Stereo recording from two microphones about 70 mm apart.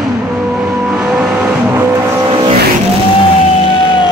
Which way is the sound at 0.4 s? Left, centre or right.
Centre.